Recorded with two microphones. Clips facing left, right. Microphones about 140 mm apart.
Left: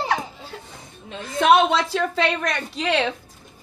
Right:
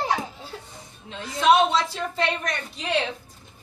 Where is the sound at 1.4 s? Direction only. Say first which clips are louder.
Left 2 dB; 65° left (ahead or behind); by 3.1 s 90° left.